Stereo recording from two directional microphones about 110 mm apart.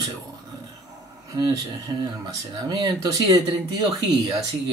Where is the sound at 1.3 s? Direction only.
35° right (ahead or behind).